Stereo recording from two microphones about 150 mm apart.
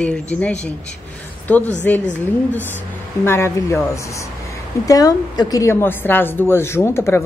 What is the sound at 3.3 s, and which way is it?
A woman's voice, 15° left (ahead or behind).